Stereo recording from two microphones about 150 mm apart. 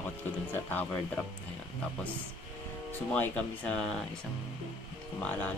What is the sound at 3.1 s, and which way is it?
Speech, 10° left (ahead or behind).